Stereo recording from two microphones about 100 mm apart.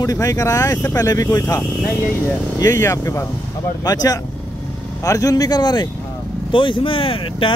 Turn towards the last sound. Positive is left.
turn(degrees=65)  # may be behind; listen again after turning